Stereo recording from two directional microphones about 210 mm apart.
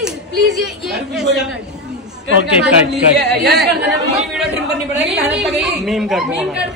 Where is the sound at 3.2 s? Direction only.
50° right (ahead or behind).